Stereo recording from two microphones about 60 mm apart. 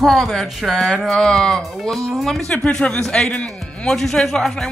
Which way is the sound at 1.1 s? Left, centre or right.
Centre.